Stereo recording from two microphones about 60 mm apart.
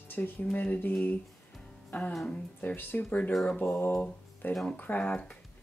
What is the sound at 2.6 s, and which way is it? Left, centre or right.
Speech, left.